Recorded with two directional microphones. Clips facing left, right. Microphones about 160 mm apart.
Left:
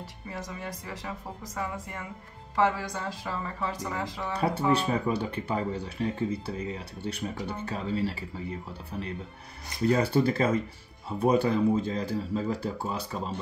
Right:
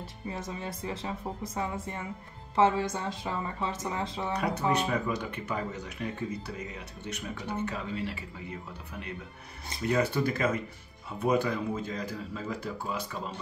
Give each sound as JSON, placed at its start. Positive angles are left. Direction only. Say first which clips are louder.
{"t": 0.3, "sound": "speech", "louder": "right 1 dB", "side_deg": -25}
{"t": 4.3, "sound": "speech", "louder": "left 3 dB", "side_deg": 30}
{"t": 9.8, "sound": "speech", "louder": "left 4 dB", "side_deg": 35}